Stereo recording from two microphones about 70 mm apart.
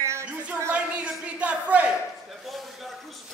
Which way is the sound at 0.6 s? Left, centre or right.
Centre.